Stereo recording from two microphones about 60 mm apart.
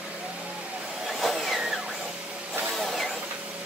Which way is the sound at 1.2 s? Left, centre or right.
Centre.